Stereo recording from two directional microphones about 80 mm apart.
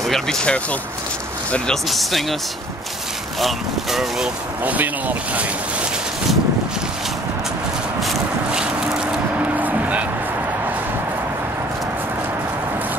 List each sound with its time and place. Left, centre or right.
0.1 s speech: centre
1.9 s speech: centre
3.3 s speech: centre
4.6 s speech: centre
8.5 s vehicle: centre
9.6 s music: right